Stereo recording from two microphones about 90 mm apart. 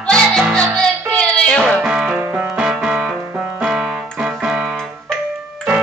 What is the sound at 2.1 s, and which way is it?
Music, 20° right (ahead or behind).